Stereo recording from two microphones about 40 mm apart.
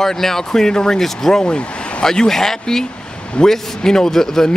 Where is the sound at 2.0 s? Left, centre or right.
Centre.